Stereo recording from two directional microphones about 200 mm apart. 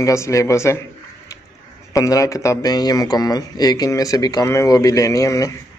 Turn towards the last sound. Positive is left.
turn(degrees=15)  # may be behind; listen again after turning